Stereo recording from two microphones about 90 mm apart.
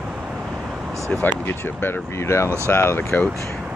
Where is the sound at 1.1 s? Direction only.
20° left (ahead or behind).